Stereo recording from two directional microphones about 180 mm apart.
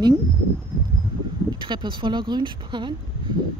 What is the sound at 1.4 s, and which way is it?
Speech, 25° right (ahead or behind).